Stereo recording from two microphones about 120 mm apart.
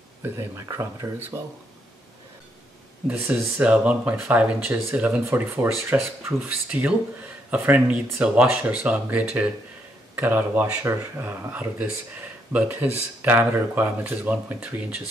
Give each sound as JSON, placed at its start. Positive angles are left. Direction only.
{"t": 0.2, "sound": "speech", "side_deg": -20}
{"t": 3.1, "sound": "speech", "side_deg": -15}